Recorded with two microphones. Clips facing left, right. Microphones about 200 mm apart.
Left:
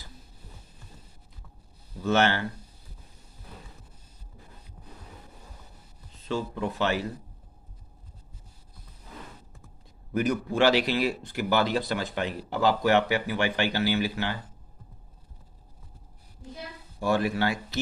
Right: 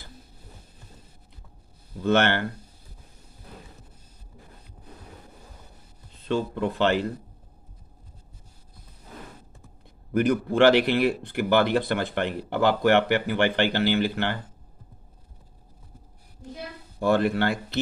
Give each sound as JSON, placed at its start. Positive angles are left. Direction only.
{"t": 2.0, "sound": "speech", "side_deg": -60}
{"t": 6.2, "sound": "speech", "side_deg": -60}
{"t": 10.1, "sound": "speech", "side_deg": -55}
{"t": 17.0, "sound": "speech", "side_deg": -60}